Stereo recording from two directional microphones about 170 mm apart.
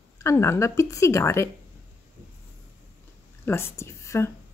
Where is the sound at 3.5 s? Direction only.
15° left (ahead or behind).